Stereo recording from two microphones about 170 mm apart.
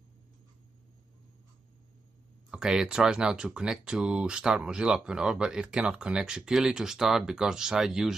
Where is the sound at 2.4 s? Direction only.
5° right (ahead or behind).